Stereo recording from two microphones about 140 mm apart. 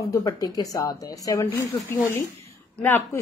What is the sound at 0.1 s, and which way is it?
A woman's voice, 25° left (ahead or behind).